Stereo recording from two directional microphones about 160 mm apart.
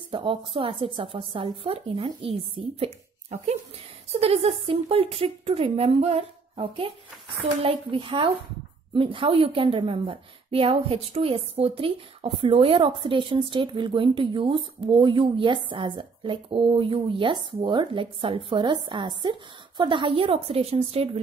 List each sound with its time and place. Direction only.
0.1 s a woman's voice: 35° right (ahead or behind)